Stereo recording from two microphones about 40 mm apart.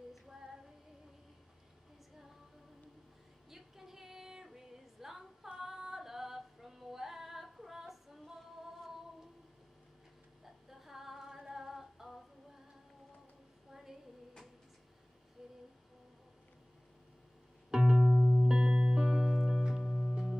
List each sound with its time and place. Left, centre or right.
0.1 s female singing: centre
3.4 s female singing: centre
10.4 s female singing: centre
13.7 s a sound: centre
15.4 s humming: centre
17.6 s music: centre
18.0 s music: centre
18.5 s music: centre
19.2 s music: centre